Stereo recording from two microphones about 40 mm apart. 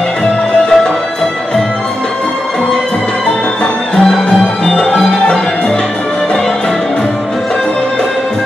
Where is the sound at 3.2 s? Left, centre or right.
Centre.